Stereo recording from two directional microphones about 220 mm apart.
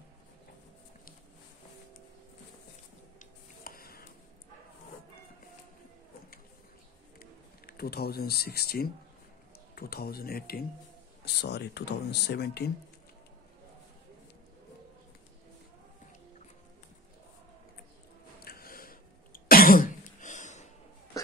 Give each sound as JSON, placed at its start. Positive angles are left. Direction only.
{"t": 3.2, "sound": "a sound", "side_deg": 40}
{"t": 7.2, "sound": "speech", "side_deg": 45}
{"t": 18.4, "sound": "cough", "side_deg": 45}